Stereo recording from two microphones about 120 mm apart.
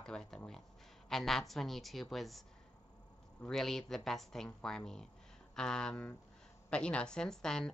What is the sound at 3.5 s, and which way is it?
A woman's voice, 5° left (ahead or behind).